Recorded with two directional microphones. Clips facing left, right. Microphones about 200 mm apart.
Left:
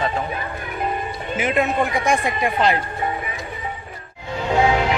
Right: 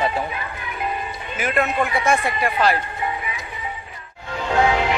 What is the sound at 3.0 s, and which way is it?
Music, 40° left (ahead or behind).